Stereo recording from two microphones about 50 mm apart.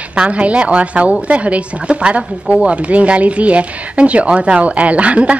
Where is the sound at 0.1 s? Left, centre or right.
Right.